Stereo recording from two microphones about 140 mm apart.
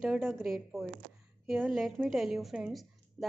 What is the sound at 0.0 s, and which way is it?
A woman's voice, 10° right (ahead or behind).